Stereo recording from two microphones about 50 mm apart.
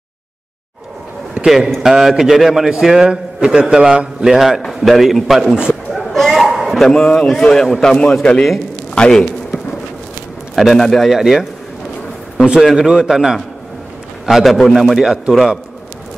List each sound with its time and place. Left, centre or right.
1.4 s a man's voice: centre
6.1 s a sound: centre
6.7 s a man's voice: centre
10.5 s a man's voice: centre
11.1 s a man's voice: centre
14.4 s a man's voice: centre
15.0 s a man's voice: centre
15.3 s a man's voice: centre